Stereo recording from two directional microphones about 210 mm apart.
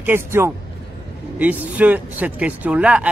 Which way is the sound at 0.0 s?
10° right (ahead or behind).